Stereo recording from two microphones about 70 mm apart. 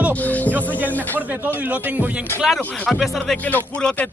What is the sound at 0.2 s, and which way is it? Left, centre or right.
Music, left.